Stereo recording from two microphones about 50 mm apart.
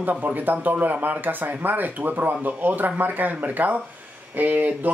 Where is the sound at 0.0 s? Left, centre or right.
Right.